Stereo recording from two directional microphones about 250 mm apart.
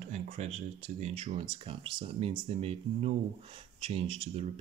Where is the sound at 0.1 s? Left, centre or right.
Right.